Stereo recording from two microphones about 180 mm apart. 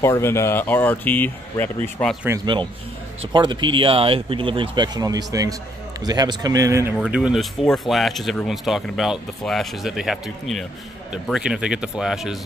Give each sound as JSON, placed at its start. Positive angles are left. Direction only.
{"t": 0.0, "sound": "speech", "side_deg": 15}
{"t": 2.2, "sound": "speech", "side_deg": -20}
{"t": 7.0, "sound": "speech", "side_deg": -5}